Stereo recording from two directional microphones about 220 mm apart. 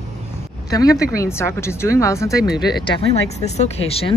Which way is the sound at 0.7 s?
15° left (ahead or behind).